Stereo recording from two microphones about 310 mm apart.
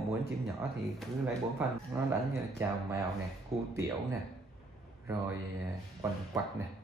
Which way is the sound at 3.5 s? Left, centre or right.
Centre.